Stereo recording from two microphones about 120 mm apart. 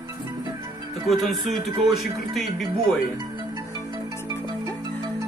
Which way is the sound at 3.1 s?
35° right (ahead or behind).